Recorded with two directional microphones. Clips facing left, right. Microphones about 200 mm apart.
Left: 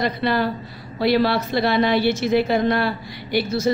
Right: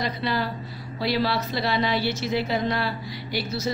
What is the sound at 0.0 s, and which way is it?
A woman's voice, 60° left (ahead or behind).